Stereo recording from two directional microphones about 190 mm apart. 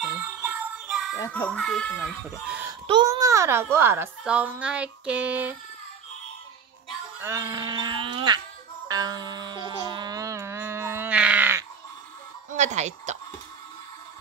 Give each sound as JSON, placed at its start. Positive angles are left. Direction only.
{"t": 0.0, "sound": "music", "side_deg": -5}
{"t": 1.3, "sound": "speech", "side_deg": 5}
{"t": 2.4, "sound": "speech", "side_deg": -5}
{"t": 2.9, "sound": "a child's voice", "side_deg": -20}
{"t": 7.2, "sound": "speech", "side_deg": -15}
{"t": 8.8, "sound": "music", "side_deg": -20}
{"t": 12.4, "sound": "a sound", "side_deg": -40}